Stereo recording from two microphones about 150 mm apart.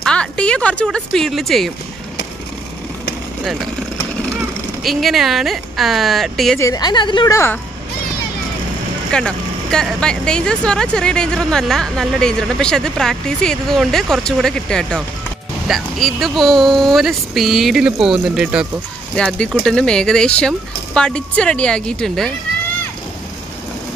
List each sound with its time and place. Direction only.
0.0 s speech: 5° left (ahead or behind)
4.8 s speech: centre (ahead or behind)
6.6 s a woman's voice: 25° left (ahead or behind)
9.1 s speech: 5° left (ahead or behind)
19.1 s speech: 5° left (ahead or behind)